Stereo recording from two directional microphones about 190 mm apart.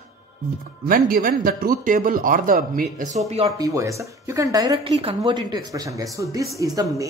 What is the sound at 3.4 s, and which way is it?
A woman's voice, 20° right (ahead or behind).